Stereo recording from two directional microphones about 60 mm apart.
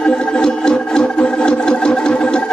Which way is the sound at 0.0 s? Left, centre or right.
Centre.